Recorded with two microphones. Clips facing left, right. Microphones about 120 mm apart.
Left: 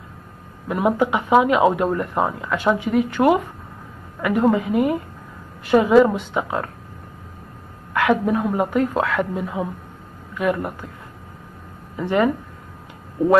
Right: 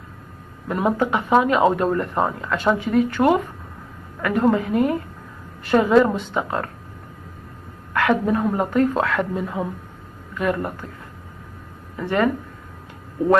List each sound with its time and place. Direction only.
0.7 s speech: 10° left (ahead or behind)
7.9 s speech: 10° left (ahead or behind)
12.0 s speech: 15° left (ahead or behind)